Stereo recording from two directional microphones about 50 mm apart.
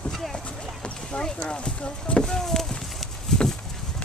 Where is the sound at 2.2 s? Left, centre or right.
Centre.